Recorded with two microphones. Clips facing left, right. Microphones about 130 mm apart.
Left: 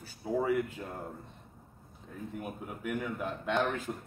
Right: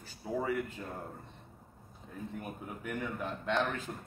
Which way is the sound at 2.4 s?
5° left (ahead or behind).